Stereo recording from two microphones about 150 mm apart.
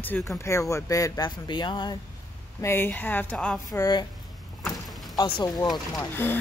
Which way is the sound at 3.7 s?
25° left (ahead or behind).